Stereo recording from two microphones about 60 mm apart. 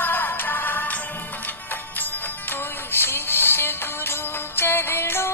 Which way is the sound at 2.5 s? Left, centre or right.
Left.